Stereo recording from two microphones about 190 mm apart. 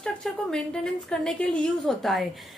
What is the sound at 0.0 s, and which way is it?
A woman's voice, 5° left (ahead or behind).